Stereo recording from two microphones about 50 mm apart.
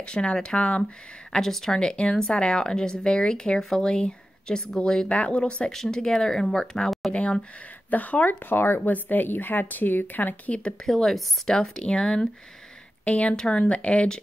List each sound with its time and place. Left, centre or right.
0.0 s speech: centre
1.3 s a woman's voice: centre
5.1 s speech: left
5.7 s a woman's voice: centre
7.1 s speech: left
8.5 s speech: left
10.9 s a woman's voice: centre
11.4 s a woman's voice: centre